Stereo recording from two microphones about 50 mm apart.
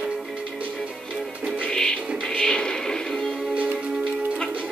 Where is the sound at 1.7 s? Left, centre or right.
Centre.